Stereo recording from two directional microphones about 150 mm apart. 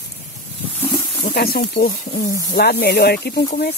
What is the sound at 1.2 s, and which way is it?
Speech, 85° left.